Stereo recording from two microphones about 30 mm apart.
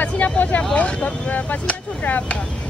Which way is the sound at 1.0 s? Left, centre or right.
Left.